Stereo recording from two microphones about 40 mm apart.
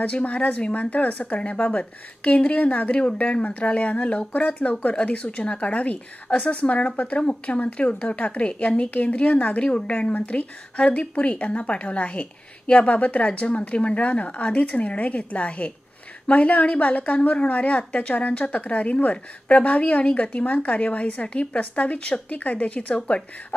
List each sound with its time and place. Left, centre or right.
0.0 s a woman's voice: left